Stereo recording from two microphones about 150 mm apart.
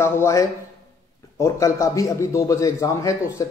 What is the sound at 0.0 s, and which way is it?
Speech, 20° left (ahead or behind).